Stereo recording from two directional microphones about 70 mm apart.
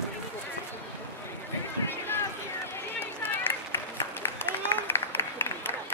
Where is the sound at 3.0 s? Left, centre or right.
Left.